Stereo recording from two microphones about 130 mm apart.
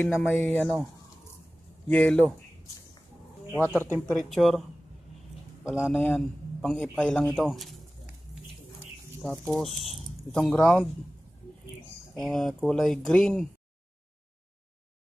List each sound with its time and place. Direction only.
0.1 s speech: centre (ahead or behind)
1.9 s a man's voice: 10° left (ahead or behind)
3.6 s a man's voice: 15° left (ahead or behind)
4.1 s a man's voice: centre (ahead or behind)
5.9 s a man's voice: 10° left (ahead or behind)
9.2 s speech: 5° left (ahead or behind)
12.2 s speech: centre (ahead or behind)